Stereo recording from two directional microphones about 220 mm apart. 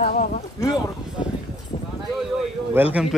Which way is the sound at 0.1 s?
35° left (ahead or behind).